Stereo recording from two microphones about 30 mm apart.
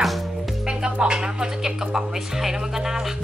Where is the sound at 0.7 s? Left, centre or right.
Right.